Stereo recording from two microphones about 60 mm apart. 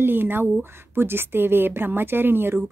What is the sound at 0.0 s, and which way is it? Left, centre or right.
A woman's voice, right.